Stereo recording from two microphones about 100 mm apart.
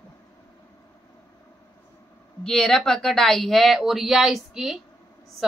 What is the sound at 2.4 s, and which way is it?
A woman's voice, 5° left (ahead or behind).